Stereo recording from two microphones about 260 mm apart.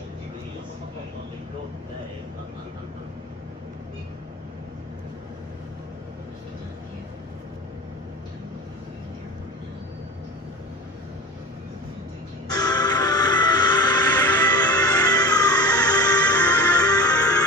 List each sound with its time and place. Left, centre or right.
12.4 s music: centre